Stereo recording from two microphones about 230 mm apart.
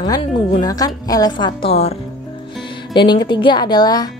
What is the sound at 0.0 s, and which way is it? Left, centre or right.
A woman's voice, centre.